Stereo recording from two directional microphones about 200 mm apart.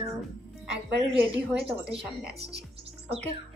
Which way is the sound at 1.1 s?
5° right (ahead or behind).